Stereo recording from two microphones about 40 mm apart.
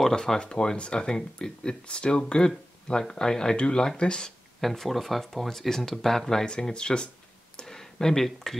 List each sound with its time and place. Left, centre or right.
0.0 s speech: centre
4.6 s speech: centre; by 7.1 s left
7.6 s a sound: centre